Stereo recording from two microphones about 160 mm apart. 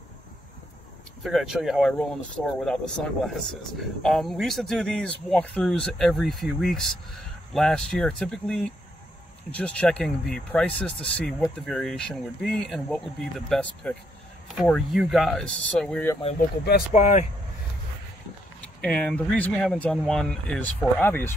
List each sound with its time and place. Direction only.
1.2 s speech: centre (ahead or behind)
16.9 s speech: 45° left (ahead or behind)
18.6 s speech: 5° left (ahead or behind)